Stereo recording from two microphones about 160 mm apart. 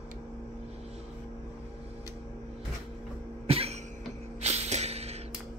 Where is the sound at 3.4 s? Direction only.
40° right (ahead or behind).